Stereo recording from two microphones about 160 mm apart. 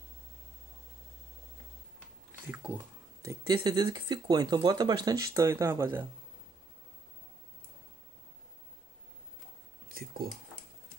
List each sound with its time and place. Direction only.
2.5 s speech: 10° right (ahead or behind)
3.3 s speech: 25° right (ahead or behind)
9.8 s a sound: 65° right (ahead or behind)